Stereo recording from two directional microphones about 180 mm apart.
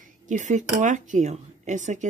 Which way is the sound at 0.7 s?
45° right (ahead or behind).